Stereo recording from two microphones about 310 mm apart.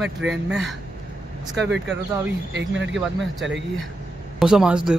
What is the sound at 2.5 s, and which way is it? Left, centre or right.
Speech, right.